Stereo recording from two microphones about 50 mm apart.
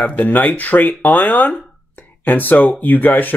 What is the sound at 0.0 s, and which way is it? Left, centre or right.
Speech, left.